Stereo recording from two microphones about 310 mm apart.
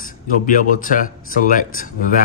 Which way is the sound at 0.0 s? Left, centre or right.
Left.